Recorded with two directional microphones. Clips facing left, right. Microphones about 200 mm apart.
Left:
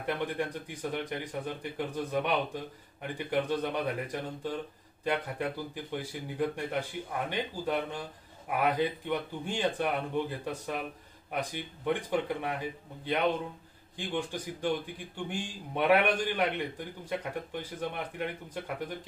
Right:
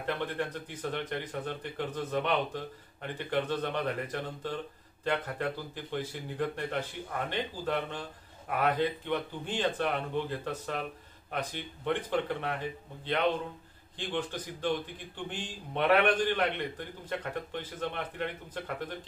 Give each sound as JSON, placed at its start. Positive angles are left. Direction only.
{"t": 0.0, "sound": "speech", "side_deg": 15}